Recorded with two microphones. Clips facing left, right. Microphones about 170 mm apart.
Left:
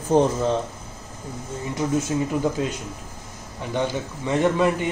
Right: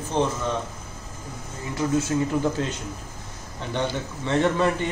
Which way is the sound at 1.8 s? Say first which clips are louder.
Even; 20° left (ahead or behind).